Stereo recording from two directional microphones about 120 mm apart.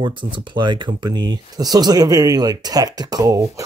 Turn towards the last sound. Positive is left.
turn(degrees=-30)  # may be behind; listen again after turning